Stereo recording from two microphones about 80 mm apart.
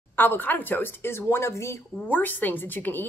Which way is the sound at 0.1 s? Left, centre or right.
Left.